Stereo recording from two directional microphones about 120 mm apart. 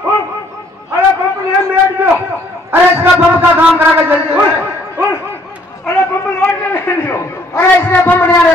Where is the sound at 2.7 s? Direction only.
20° right (ahead or behind).